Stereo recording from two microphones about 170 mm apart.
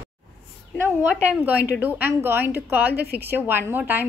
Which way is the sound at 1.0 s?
10° right (ahead or behind).